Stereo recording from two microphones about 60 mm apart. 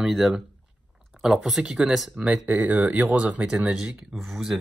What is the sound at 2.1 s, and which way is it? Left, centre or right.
Speech, right.